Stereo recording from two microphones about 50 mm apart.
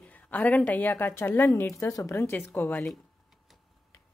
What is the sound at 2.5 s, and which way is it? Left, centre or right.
Speech, left.